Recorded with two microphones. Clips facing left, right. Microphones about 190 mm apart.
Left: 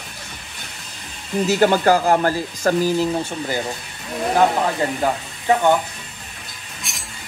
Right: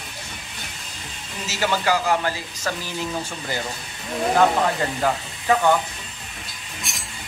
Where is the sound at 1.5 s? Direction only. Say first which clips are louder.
Left 7 dB; 50° left (ahead or behind).